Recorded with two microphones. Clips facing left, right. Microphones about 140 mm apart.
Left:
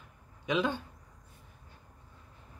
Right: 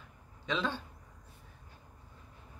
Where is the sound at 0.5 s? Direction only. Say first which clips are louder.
Left 4 dB; 15° left (ahead or behind).